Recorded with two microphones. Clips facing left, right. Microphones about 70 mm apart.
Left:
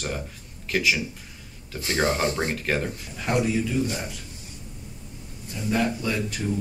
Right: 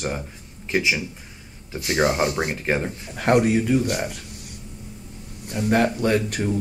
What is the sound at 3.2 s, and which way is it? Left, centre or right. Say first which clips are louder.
Speech: right 6 dB; right.